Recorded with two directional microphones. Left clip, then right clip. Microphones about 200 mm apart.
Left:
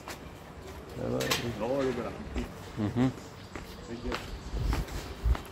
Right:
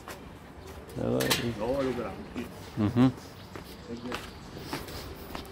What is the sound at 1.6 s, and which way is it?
Speech, 60° right (ahead or behind).